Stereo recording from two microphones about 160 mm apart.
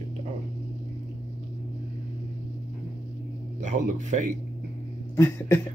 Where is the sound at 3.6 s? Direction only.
50° right (ahead or behind).